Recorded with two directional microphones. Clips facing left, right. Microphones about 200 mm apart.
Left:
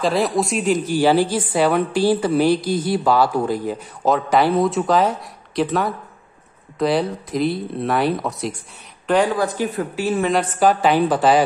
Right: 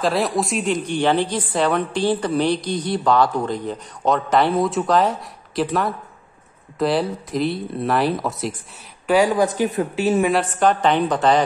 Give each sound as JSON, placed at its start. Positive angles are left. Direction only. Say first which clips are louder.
{"t": 0.0, "sound": "a woman's voice", "louder": "left 1 dB", "side_deg": 0}
{"t": 10.2, "sound": "a woman's voice", "louder": "left 1 dB", "side_deg": 0}